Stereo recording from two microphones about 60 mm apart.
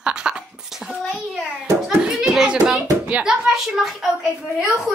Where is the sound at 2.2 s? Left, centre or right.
Centre.